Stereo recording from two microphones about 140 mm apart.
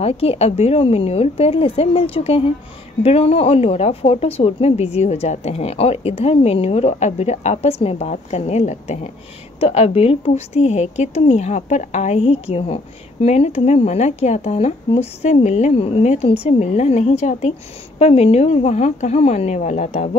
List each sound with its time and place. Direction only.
0.0 s speech: 45° left (ahead or behind)